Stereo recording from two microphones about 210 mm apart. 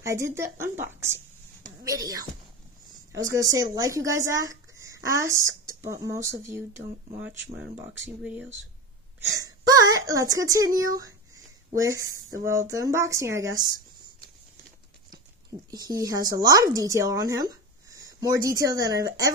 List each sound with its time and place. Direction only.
0.0 s speech: 15° right (ahead or behind)
9.7 s speech: 15° right (ahead or behind)
15.7 s speech: 20° right (ahead or behind)